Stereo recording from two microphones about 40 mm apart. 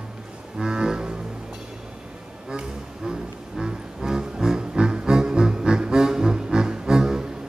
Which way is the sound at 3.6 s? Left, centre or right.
Centre.